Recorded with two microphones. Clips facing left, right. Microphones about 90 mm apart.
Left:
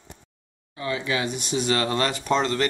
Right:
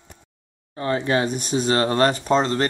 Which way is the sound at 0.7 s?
40° right (ahead or behind).